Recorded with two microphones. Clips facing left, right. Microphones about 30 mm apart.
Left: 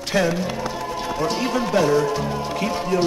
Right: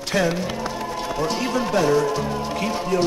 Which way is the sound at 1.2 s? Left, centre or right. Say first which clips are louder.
Left 1 dB; centre.